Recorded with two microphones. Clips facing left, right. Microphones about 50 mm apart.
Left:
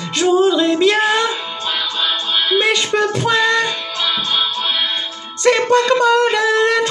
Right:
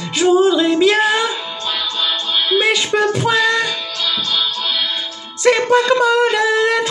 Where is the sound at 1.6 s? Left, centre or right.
Left.